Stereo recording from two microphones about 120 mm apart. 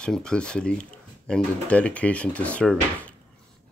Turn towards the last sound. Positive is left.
turn(degrees=10)  # may be behind; listen again after turning